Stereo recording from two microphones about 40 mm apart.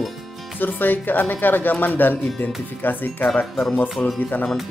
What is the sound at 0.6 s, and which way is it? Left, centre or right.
Speech, left.